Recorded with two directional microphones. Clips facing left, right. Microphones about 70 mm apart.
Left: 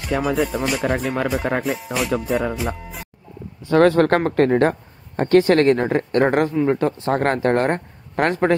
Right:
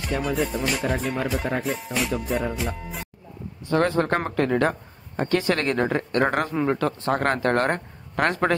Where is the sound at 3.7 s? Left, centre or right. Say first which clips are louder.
Left 7 dB; left.